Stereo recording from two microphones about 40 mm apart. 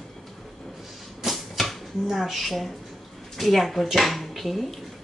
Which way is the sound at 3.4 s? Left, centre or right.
Centre.